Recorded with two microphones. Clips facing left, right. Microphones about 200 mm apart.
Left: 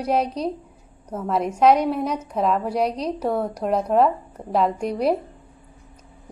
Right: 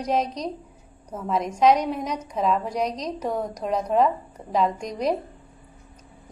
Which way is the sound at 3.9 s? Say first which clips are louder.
Left 2 dB; 50° left (ahead or behind).